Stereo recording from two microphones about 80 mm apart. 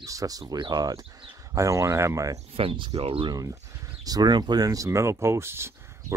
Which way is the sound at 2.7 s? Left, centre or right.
Right.